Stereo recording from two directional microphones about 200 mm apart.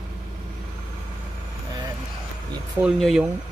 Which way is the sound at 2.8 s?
5° right (ahead or behind).